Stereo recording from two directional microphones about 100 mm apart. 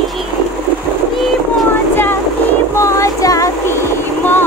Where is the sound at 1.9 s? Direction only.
20° left (ahead or behind).